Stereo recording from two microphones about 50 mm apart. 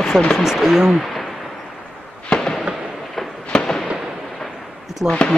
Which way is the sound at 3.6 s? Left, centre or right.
Centre.